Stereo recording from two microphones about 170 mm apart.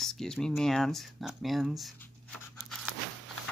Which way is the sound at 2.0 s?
5° left (ahead or behind).